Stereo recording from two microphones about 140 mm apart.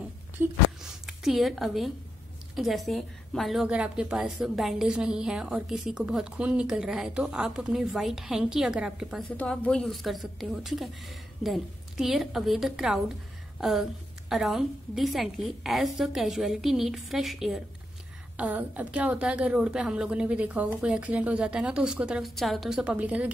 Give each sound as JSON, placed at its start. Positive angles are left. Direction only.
{"t": 0.4, "sound": "a woman's voice", "side_deg": -15}
{"t": 0.8, "sound": "a woman's voice", "side_deg": 0}
{"t": 9.4, "sound": "a woman's voice", "side_deg": 10}